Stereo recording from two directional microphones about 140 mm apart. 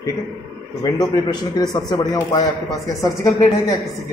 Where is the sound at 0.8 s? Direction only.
25° left (ahead or behind).